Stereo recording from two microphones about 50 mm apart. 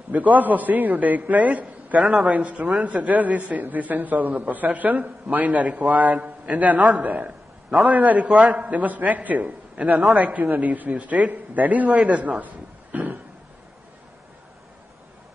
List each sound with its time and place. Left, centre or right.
0.1 s a man's voice: right